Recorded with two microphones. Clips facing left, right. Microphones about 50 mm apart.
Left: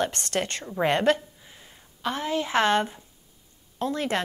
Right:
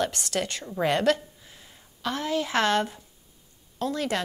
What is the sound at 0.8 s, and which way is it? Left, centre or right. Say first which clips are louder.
A woman's voice: left 1 dB; left.